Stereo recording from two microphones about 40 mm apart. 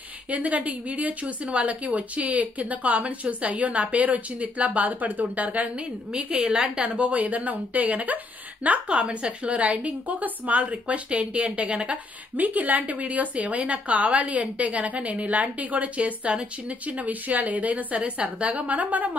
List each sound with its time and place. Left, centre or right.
0.3 s a woman's voice: right
6.1 s a woman's voice: right
12.4 s a woman's voice: right